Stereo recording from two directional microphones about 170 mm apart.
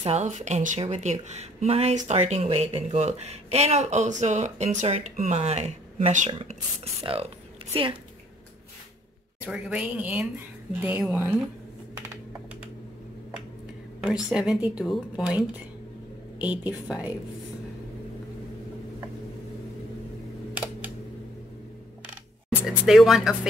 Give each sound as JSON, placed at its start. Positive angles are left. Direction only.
{"t": 0.0, "sound": "speech", "side_deg": -40}
{"t": 9.5, "sound": "speech", "side_deg": -5}
{"t": 14.3, "sound": "a woman's voice", "side_deg": -5}
{"t": 22.6, "sound": "a woman's voice", "side_deg": -5}